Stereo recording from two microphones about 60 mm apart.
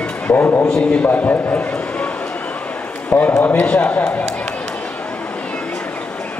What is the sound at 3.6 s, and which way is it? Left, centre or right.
Speech, left.